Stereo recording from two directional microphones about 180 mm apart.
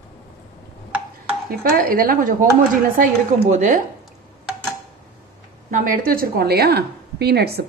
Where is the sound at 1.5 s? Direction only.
55° right (ahead or behind).